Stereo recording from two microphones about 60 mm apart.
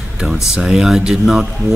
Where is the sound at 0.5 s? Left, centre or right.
Centre.